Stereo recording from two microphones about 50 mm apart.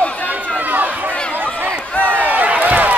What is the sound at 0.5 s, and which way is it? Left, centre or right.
Run, right.